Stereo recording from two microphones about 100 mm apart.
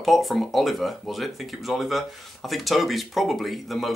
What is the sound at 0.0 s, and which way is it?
Speech, centre (ahead or behind).